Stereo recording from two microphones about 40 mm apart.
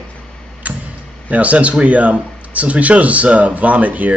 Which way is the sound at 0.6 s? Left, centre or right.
Right.